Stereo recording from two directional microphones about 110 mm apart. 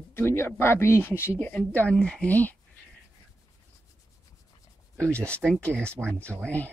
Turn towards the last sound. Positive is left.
turn(degrees=15)  # may be behind; listen again after turning